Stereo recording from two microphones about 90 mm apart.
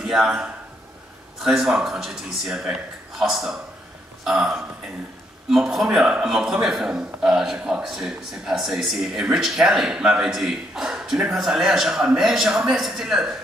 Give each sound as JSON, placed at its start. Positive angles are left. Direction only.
{"t": 0.0, "sound": "a man's voice", "side_deg": -10}